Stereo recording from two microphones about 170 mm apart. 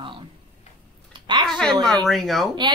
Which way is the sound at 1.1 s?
25° right (ahead or behind).